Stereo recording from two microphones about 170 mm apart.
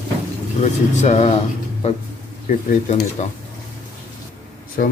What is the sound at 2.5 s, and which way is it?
Speech, 45° left (ahead or behind).